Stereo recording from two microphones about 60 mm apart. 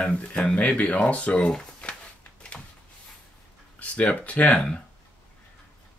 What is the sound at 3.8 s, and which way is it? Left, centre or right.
Speech, left.